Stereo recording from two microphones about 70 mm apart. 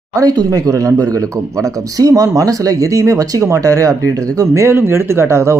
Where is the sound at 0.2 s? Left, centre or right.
Right.